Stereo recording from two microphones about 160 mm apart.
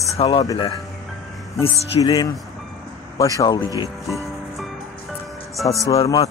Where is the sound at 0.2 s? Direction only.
30° left (ahead or behind).